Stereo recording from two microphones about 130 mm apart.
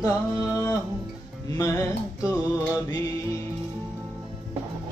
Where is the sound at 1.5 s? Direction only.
25° left (ahead or behind).